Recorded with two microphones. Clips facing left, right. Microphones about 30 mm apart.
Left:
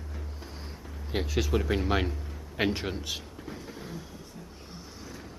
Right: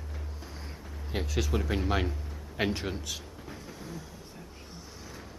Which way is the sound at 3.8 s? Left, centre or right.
Centre.